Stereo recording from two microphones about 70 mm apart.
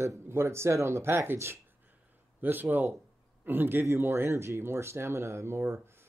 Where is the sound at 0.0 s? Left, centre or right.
Right.